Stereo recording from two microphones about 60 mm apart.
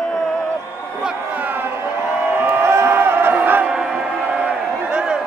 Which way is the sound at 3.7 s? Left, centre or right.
Centre.